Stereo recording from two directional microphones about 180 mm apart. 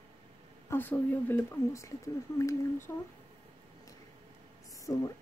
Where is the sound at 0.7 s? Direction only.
10° left (ahead or behind).